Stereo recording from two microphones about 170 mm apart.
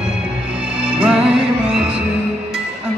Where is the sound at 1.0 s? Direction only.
5° right (ahead or behind).